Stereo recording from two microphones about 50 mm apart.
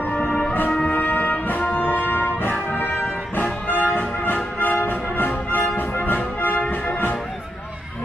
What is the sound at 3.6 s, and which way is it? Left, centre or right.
Music, left.